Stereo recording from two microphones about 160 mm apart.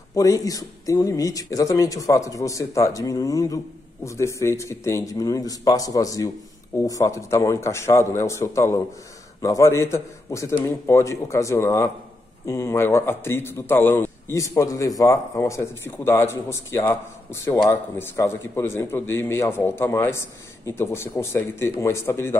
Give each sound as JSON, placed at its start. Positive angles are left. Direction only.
{"t": 0.1, "sound": "a man's voice", "side_deg": 20}